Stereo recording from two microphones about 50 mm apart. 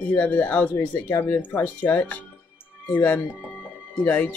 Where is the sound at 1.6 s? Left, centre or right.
Left.